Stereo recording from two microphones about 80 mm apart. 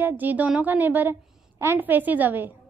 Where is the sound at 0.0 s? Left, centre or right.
Right.